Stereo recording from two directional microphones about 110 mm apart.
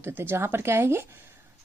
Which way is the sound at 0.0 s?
20° right (ahead or behind).